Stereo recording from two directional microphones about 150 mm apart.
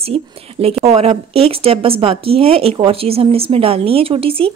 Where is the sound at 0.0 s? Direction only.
40° right (ahead or behind).